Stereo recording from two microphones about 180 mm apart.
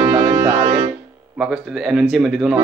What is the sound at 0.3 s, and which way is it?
Music, 20° right (ahead or behind).